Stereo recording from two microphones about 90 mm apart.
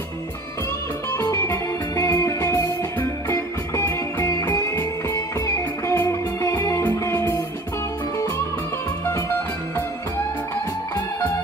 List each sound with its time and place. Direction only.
1.1 s music: 30° left (ahead or behind)